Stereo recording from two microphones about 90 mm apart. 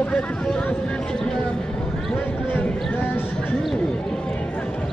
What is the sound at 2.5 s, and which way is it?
Speech, 20° left (ahead or behind).